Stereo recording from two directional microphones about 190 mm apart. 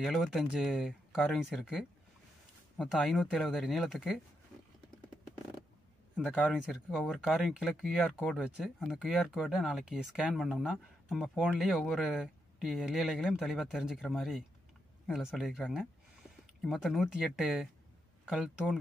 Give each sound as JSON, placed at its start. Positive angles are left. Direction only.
{"t": 0.0, "sound": "speech", "side_deg": 0}
{"t": 6.1, "sound": "speech", "side_deg": -5}